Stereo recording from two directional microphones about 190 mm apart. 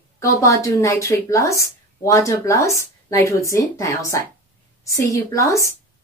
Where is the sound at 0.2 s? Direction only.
15° left (ahead or behind).